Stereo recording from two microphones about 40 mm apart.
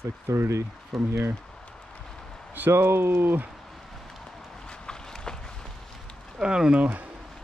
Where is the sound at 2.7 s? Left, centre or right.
Right.